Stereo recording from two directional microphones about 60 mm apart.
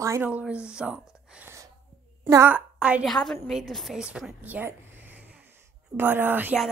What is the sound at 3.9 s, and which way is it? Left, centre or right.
Speech, centre.